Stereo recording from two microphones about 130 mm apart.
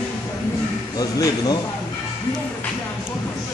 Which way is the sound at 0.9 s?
30° left (ahead or behind).